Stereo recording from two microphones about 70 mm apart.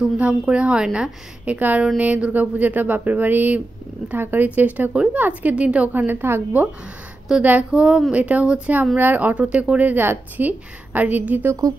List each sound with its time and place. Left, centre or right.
0.0 s a woman's voice: centre
1.4 s speech: right
7.3 s a woman's voice: centre; by 11.5 s right